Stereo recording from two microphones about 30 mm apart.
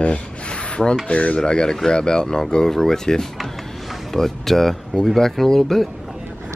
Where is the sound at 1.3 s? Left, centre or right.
Left.